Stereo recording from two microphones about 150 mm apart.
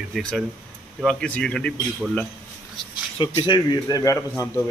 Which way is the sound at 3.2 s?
30° left (ahead or behind).